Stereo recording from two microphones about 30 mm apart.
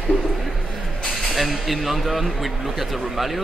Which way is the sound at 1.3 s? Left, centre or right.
Centre.